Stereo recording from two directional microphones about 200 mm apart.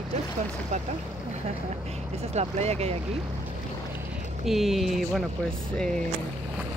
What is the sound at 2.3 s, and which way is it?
Speech, 35° right (ahead or behind).